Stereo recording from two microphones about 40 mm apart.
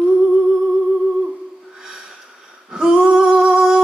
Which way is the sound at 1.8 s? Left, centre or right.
Centre.